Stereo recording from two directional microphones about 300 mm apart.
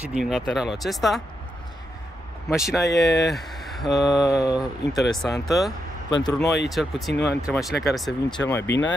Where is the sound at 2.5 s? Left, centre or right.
Centre.